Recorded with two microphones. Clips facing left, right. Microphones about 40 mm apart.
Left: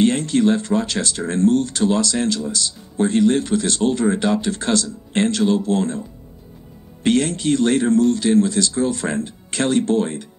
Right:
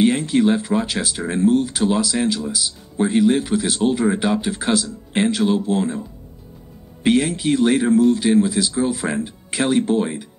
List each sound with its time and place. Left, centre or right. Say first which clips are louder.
0.0 s speech: even; centre